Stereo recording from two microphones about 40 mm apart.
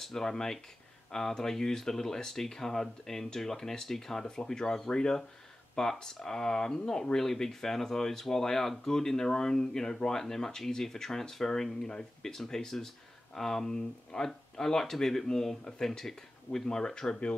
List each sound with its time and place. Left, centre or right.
0.0 s speech: centre